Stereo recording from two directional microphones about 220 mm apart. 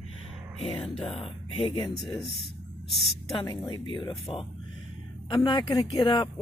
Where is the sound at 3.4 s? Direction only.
20° left (ahead or behind).